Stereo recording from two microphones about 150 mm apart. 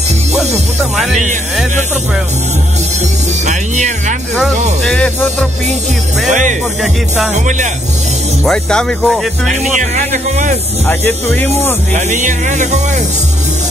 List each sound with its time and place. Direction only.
0.9 s speech: centre (ahead or behind)
3.4 s speech: 55° right (ahead or behind)
4.8 s speech: 5° left (ahead or behind)
7.3 s speech: 55° right (ahead or behind)
8.5 s speech: 5° left (ahead or behind)
9.5 s speech: 55° right (ahead or behind)
10.9 s speech: 10° left (ahead or behind)
11.9 s speech: 55° right (ahead or behind)